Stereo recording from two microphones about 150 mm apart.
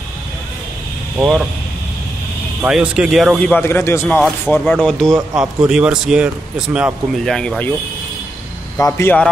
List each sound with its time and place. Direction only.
2.6 s speech: 5° right (ahead or behind)
3.3 s a man's voice: 10° left (ahead or behind)
4.2 s speech: 5° left (ahead or behind)
7.3 s a man's voice: 10° left (ahead or behind)
8.7 s a man's voice: 20° left (ahead or behind)